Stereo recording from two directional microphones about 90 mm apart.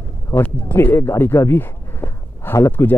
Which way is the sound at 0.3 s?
20° left (ahead or behind).